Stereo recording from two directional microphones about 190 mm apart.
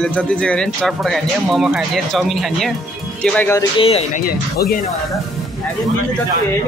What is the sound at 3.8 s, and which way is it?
Speech, 30° left (ahead or behind).